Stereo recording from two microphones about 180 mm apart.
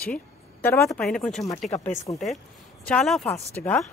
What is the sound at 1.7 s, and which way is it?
Speech, 15° left (ahead or behind).